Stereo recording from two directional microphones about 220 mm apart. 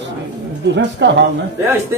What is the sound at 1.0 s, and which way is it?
Speech, 50° right (ahead or behind).